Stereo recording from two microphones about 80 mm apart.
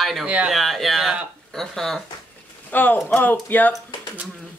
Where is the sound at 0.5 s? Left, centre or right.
Centre.